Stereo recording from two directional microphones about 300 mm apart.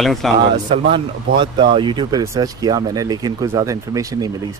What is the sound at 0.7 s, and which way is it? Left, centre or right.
Speech, centre.